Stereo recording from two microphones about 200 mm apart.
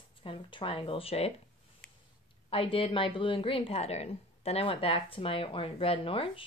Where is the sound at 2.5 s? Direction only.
25° left (ahead or behind).